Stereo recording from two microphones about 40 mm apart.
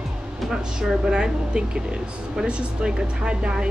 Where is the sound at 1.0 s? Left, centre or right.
Right.